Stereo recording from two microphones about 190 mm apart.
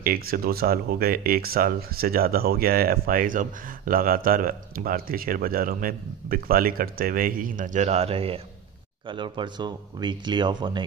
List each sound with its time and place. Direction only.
0.0 s speech: 50° right (ahead or behind); by 10.9 s 25° right (ahead or behind)